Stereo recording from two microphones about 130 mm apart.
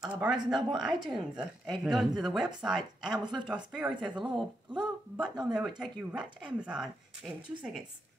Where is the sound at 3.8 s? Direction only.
20° right (ahead or behind).